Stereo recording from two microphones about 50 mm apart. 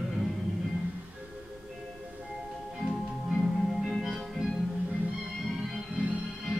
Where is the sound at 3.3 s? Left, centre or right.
Centre.